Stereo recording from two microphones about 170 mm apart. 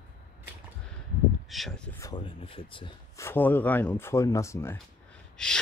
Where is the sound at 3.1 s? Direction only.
15° left (ahead or behind).